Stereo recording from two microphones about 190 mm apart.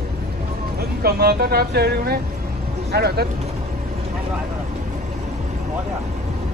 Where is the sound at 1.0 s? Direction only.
55° right (ahead or behind).